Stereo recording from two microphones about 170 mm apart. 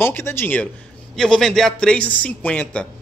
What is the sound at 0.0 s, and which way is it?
A man's voice, 15° left (ahead or behind).